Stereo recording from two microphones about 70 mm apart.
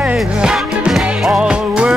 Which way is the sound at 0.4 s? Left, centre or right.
Centre.